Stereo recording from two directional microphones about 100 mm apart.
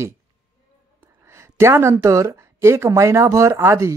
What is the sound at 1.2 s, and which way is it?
Speech, 25° right (ahead or behind).